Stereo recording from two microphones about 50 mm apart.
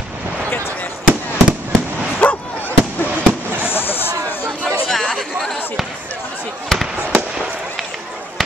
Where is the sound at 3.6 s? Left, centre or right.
Left.